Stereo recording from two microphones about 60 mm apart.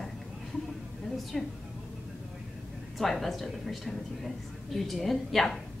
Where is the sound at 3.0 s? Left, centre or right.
Centre.